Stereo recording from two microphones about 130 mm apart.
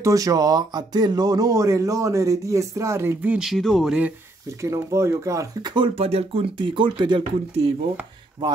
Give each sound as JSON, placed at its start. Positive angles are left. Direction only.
{"t": 0.0, "sound": "speech", "side_deg": -25}
{"t": 4.6, "sound": "speech", "side_deg": -20}
{"t": 5.8, "sound": "speech", "side_deg": -50}